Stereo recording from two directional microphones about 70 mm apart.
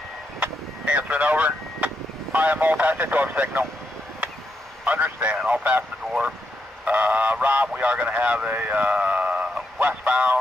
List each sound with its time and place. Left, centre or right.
0.4 s vehicle: right
2.3 s speech: right
4.8 s speech: right
6.8 s goose: right
7.4 s speech: right